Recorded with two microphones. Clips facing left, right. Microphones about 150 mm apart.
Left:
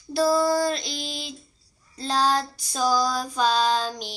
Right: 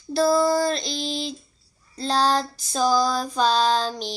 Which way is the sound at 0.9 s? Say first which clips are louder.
Right 6 dB; 35° right (ahead or behind).